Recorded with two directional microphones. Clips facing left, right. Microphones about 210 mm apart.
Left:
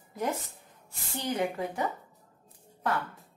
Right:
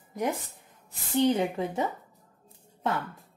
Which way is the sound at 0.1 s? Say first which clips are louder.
Right 2 dB; 15° right (ahead or behind).